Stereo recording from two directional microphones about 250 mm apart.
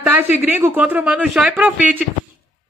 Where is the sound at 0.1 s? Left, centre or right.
Centre.